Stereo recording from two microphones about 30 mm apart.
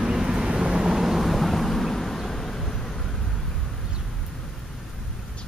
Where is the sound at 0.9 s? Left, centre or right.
Centre.